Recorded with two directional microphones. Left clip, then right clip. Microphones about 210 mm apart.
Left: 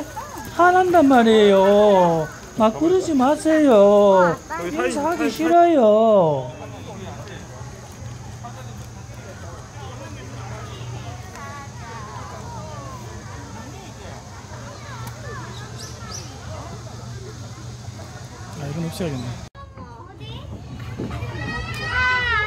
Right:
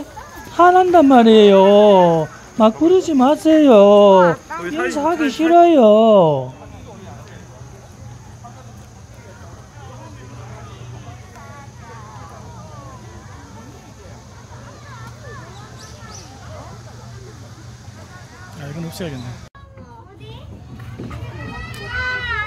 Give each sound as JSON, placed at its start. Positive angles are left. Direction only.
{"t": 0.6, "sound": "speech", "side_deg": -25}
{"t": 4.2, "sound": "speech", "side_deg": -45}
{"t": 5.3, "sound": "speech", "side_deg": -20}
{"t": 18.6, "sound": "a sound", "side_deg": -5}
{"t": 22.0, "sound": "children playing", "side_deg": -40}